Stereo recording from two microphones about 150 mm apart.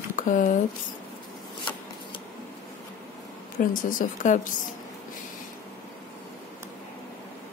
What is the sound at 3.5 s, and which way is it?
A woman's voice, 65° left (ahead or behind).